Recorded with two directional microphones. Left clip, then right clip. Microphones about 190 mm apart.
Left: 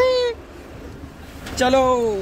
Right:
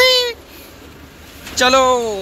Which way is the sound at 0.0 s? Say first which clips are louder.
Right 5 dB; 10° left (ahead or behind).